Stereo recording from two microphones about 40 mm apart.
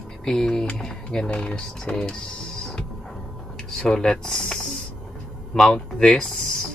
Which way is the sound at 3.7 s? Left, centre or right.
Centre.